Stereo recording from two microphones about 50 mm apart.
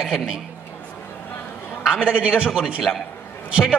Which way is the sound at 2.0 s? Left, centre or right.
Centre.